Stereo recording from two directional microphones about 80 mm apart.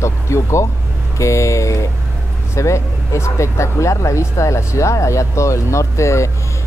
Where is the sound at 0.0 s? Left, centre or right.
Left.